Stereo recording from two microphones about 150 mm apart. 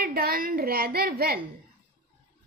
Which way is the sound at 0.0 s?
90° right.